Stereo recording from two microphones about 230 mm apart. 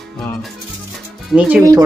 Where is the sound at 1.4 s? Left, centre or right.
Centre.